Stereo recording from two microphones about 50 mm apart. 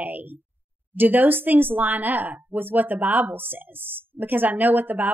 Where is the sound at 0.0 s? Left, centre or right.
Right.